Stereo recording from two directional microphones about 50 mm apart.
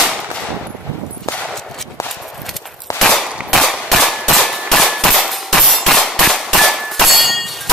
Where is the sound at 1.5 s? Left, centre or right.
Centre.